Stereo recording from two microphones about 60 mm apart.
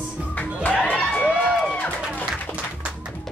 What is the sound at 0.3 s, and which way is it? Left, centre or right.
Music, left.